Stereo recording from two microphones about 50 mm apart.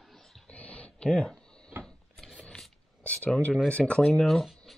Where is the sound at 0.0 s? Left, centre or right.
Centre.